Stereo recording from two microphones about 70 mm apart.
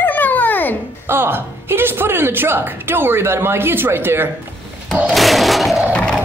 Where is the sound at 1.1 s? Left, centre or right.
Right.